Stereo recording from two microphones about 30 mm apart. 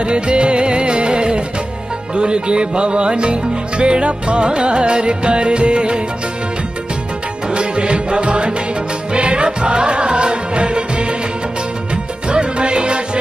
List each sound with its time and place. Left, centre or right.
0.0 s music: right
7.5 s music: right